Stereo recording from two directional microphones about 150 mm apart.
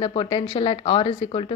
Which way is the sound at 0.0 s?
35° left (ahead or behind).